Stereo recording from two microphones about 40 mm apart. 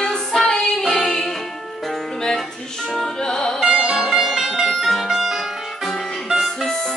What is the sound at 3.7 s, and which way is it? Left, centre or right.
Sitar, centre.